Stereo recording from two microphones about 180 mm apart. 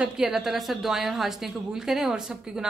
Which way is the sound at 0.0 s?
5° right (ahead or behind).